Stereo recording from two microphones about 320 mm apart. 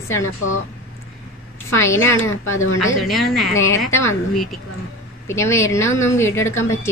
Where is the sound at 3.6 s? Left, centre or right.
Left.